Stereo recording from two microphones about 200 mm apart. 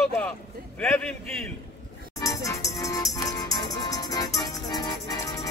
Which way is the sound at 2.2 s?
15° left (ahead or behind).